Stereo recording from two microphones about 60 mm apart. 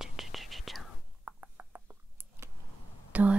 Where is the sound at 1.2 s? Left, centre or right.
Right.